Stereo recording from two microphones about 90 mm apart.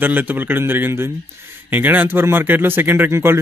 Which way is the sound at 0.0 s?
20° right (ahead or behind).